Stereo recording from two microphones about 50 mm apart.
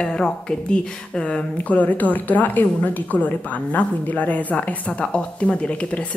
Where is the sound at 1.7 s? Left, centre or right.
Left.